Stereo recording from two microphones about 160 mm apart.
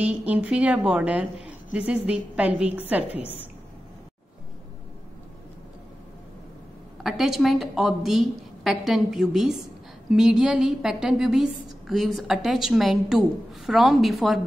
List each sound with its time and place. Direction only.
0.0 s a woman's voice: 10° right (ahead or behind)
3.1 s a woman's voice: 35° left (ahead or behind)
7.0 s a woman's voice: centre (ahead or behind)